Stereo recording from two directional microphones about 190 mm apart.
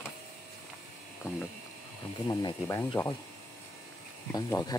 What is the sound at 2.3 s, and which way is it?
Speech, 20° left (ahead or behind).